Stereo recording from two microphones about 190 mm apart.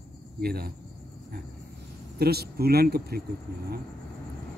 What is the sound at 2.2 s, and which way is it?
Speech, 55° right (ahead or behind).